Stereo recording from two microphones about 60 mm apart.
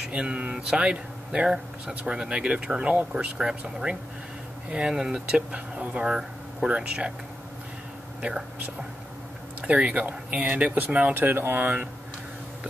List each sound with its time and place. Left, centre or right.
0.1 s speech: centre
8.2 s speech: centre
9.6 s speech: right
11.1 s speech: right